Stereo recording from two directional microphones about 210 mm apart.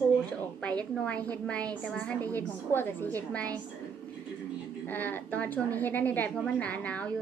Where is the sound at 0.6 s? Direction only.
5° left (ahead or behind).